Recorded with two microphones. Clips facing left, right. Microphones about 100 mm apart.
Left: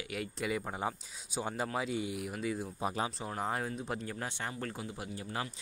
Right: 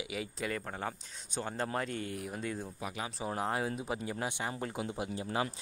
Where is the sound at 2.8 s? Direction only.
35° left (ahead or behind).